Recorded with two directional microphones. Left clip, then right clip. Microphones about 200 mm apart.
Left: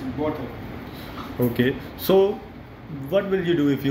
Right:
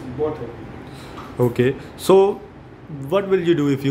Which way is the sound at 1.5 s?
35° right (ahead or behind).